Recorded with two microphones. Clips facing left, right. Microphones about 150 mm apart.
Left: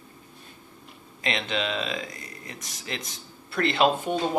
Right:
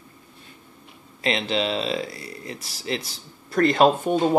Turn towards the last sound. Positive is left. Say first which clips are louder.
# right 5 dB
turn(degrees=-45)  # may be behind; listen again after turning